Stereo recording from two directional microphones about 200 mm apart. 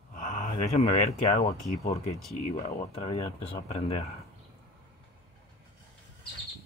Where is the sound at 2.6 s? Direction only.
30° left (ahead or behind).